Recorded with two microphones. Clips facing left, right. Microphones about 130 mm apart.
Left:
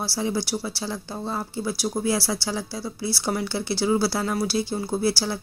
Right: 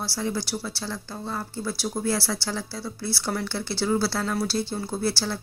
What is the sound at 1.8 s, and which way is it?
Speech, 20° left (ahead or behind).